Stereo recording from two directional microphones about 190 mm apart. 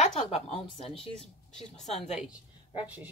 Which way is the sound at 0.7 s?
30° left (ahead or behind).